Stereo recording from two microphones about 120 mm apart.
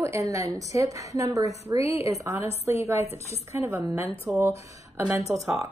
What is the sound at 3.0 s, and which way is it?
Speech, 60° left (ahead or behind).